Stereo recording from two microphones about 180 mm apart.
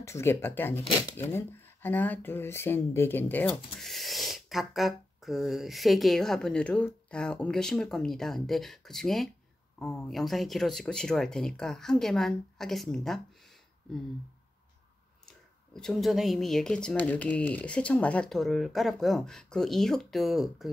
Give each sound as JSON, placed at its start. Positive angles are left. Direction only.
{"t": 0.0, "sound": "speech", "side_deg": 15}
{"t": 15.2, "sound": "speech", "side_deg": 5}